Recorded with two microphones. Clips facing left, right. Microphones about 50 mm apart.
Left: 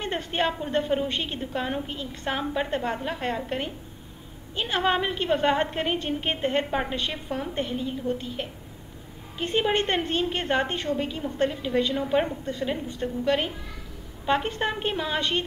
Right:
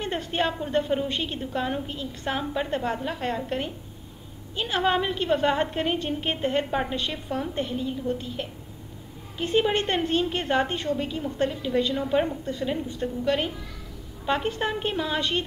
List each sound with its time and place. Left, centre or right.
0.0 s a sound: left
0.3 s a woman's voice: centre
6.4 s a woman's voice: left
6.7 s a woman's voice: centre
9.8 s a woman's voice: centre